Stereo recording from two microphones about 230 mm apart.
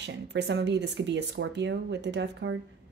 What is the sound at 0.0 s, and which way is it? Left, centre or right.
Speech, right.